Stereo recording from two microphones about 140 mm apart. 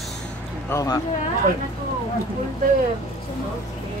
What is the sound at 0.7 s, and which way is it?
Speech, 25° left (ahead or behind).